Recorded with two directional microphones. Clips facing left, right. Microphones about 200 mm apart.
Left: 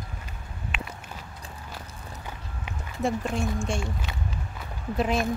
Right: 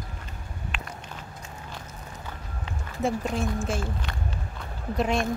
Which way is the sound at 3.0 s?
Centre (ahead or behind).